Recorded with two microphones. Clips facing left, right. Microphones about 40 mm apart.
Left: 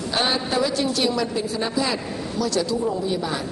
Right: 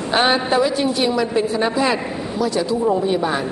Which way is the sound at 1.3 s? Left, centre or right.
Right.